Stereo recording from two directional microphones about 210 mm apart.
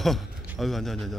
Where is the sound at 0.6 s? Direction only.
Centre (ahead or behind).